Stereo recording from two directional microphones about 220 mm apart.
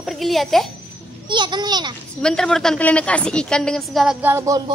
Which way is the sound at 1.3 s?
20° right (ahead or behind).